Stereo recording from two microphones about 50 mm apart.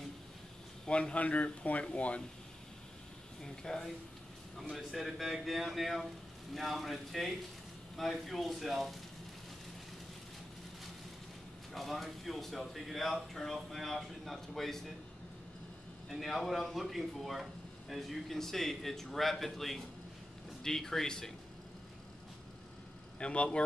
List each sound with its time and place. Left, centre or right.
0.8 s speech: left
3.4 s speech: centre
4.6 s speech: centre
11.7 s speech: centre
16.1 s speech: centre
23.1 s speech: left